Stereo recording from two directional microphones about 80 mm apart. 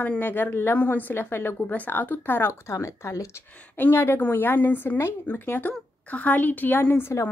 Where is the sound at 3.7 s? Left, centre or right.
Left.